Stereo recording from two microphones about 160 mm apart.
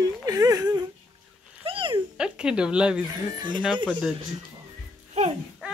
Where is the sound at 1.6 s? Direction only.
35° right (ahead or behind).